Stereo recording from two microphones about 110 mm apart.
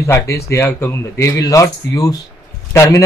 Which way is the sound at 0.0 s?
25° left (ahead or behind).